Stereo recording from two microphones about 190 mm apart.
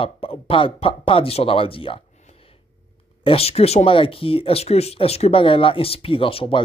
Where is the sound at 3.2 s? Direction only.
30° left (ahead or behind).